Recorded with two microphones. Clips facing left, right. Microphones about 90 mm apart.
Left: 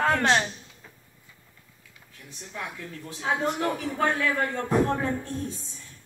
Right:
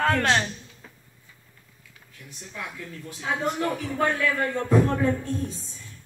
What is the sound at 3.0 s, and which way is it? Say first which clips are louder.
Speech: left 1 dB; 25° left (ahead or behind).